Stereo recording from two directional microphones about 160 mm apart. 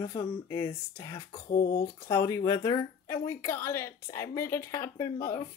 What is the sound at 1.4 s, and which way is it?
Speech, 80° left.